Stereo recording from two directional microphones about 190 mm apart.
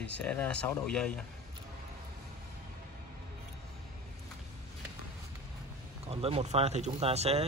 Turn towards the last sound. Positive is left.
turn(degrees=-35)  # may be behind; listen again after turning